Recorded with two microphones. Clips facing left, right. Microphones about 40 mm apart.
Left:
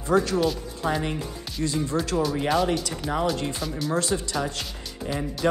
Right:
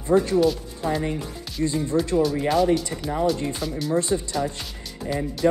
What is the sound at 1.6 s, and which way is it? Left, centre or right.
Speech, centre.